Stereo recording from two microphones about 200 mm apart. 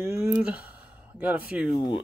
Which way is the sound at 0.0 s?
10° right (ahead or behind).